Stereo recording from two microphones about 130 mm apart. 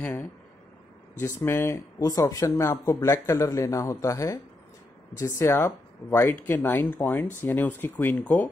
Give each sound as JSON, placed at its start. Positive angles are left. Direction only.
{"t": 0.0, "sound": "speech", "side_deg": 15}